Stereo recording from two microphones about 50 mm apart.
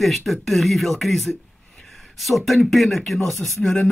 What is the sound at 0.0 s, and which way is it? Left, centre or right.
Speech, centre.